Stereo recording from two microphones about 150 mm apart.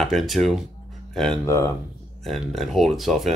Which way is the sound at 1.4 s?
20° left (ahead or behind).